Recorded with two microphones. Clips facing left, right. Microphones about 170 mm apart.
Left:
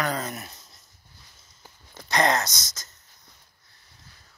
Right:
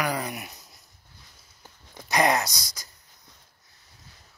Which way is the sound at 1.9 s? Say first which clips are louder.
Even; 15° right (ahead or behind).